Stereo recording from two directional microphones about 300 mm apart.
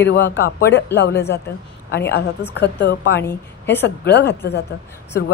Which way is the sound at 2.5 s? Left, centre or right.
Left.